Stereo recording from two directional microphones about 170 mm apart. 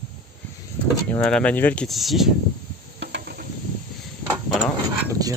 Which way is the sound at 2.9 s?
90° right.